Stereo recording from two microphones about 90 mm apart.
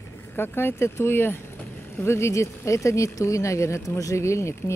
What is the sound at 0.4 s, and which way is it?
Speech, 25° left (ahead or behind).